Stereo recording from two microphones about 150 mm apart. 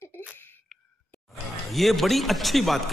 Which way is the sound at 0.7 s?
Centre (ahead or behind).